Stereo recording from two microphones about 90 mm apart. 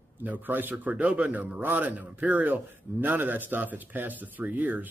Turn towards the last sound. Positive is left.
turn(degrees=-20)  # may be behind; listen again after turning